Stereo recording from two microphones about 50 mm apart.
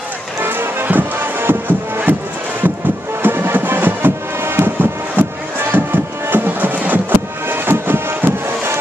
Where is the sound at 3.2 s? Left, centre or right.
Right.